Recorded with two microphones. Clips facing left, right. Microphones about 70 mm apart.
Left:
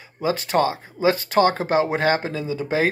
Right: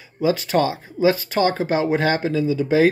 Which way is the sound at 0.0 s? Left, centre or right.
Left.